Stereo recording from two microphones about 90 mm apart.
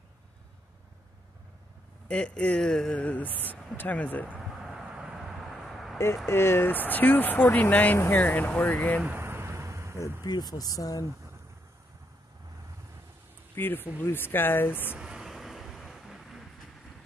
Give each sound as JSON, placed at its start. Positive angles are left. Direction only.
{"t": 2.0, "sound": "speech", "side_deg": 10}
{"t": 4.3, "sound": "a sound", "side_deg": -5}
{"t": 6.2, "sound": "speech", "side_deg": 30}
{"t": 9.0, "sound": "a sound", "side_deg": -25}
{"t": 10.2, "sound": "speech", "side_deg": 50}
{"t": 13.6, "sound": "speech", "side_deg": 20}
{"t": 15.0, "sound": "vehicle", "side_deg": -5}